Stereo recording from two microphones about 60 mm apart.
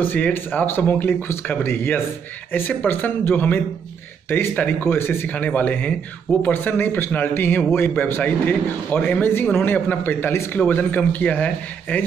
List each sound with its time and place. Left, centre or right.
0.0 s speech: left
5.3 s a man's voice: left